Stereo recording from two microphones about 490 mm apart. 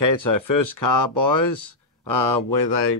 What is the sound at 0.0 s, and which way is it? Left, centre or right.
Speech, left.